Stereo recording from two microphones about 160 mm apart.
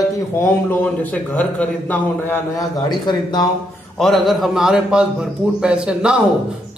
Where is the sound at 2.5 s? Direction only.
25° left (ahead or behind).